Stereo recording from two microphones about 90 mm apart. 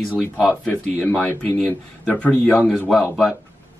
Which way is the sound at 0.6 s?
15° left (ahead or behind).